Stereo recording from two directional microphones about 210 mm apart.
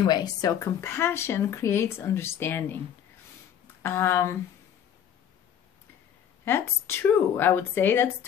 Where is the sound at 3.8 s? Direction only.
10° left (ahead or behind).